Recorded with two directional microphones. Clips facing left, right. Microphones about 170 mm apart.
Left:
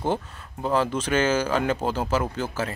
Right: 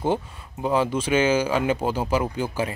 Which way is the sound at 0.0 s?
10° right (ahead or behind).